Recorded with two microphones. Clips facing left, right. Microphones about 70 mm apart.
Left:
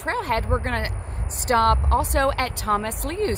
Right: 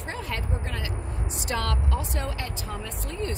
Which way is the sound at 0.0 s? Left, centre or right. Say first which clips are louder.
Left 9 dB; left.